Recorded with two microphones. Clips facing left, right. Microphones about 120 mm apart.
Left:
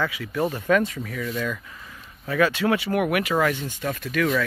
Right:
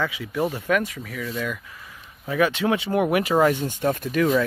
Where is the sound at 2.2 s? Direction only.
15° right (ahead or behind).